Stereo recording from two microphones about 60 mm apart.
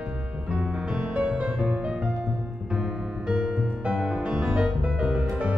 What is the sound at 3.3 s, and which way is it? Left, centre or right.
Music, centre.